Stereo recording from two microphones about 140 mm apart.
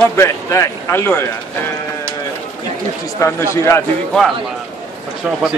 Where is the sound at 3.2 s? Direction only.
20° left (ahead or behind).